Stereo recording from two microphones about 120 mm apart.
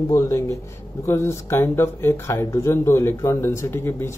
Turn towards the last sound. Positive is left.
turn(degrees=20)  # may be behind; listen again after turning